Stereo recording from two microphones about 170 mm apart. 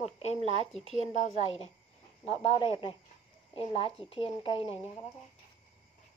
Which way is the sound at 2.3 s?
35° left (ahead or behind).